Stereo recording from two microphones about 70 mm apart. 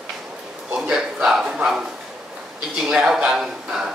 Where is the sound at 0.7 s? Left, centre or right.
Centre.